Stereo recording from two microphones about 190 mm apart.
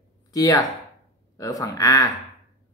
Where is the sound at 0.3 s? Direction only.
20° left (ahead or behind).